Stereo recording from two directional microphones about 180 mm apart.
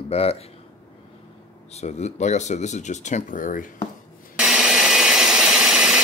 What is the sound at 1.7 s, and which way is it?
Speech, 40° left (ahead or behind).